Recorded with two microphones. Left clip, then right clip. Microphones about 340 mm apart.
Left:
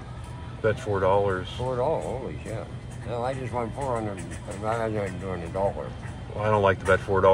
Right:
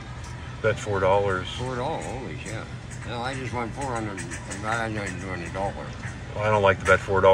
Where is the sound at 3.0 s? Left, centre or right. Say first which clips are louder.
Left 1 dB; left.